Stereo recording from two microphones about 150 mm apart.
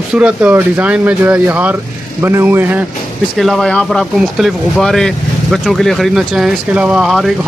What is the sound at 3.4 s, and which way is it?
Speech, centre (ahead or behind).